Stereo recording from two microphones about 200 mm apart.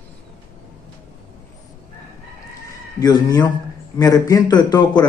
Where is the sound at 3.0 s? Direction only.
20° left (ahead or behind).